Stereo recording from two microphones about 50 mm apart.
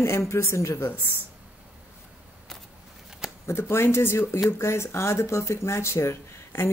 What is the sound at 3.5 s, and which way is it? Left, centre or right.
Speech, left.